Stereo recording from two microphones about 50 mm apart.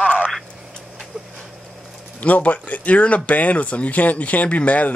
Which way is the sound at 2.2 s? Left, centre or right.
Left.